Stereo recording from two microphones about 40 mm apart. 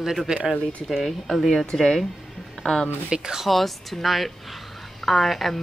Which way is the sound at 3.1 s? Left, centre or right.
Centre.